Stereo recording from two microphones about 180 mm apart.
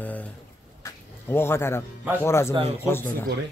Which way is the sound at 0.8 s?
15° left (ahead or behind).